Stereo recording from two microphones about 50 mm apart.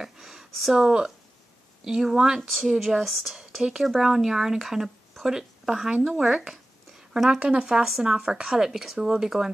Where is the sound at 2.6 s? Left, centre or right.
Centre.